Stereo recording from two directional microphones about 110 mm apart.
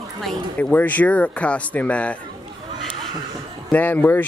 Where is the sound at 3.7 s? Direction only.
15° left (ahead or behind).